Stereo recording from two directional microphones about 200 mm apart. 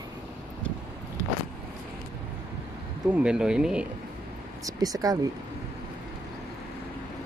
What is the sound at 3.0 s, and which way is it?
Speech, 5° right (ahead or behind).